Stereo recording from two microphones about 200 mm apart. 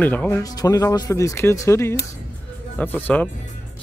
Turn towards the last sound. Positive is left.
turn(degrees=10)  # may be behind; listen again after turning